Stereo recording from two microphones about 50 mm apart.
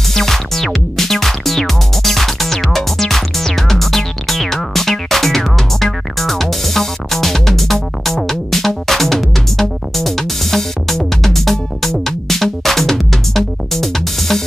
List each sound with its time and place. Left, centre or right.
0.1 s music: centre